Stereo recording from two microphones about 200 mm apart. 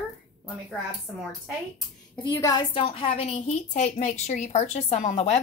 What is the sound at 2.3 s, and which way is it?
A woman's voice, 15° left (ahead or behind).